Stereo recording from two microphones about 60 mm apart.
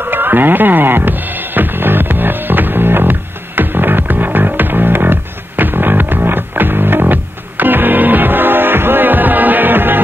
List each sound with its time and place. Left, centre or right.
0.0 s music: right